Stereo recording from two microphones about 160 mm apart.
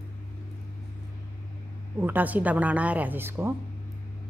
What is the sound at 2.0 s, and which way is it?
Speech, 10° right (ahead or behind).